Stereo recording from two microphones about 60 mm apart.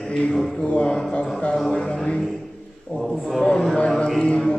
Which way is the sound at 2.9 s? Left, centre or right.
Centre.